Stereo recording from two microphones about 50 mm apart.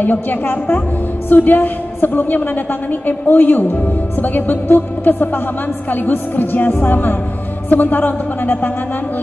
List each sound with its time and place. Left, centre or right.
0.0 s a woman's voice: left